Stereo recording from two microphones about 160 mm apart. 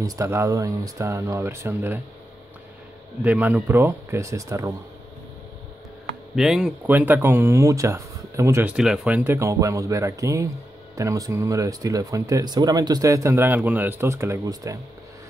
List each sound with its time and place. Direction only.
0.0 s speech: 20° right (ahead or behind)
3.3 s speech: 10° right (ahead or behind)
6.3 s speech: 5° right (ahead or behind)
8.7 s speech: 5° right (ahead or behind); by 14.8 s 20° right (ahead or behind)